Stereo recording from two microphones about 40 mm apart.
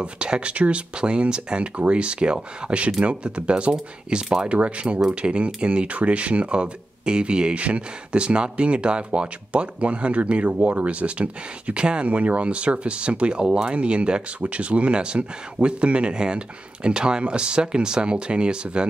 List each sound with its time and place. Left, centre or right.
0.0 s speech: right
4.5 s speech: right